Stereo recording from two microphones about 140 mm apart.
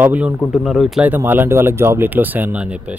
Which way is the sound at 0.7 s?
Centre (ahead or behind).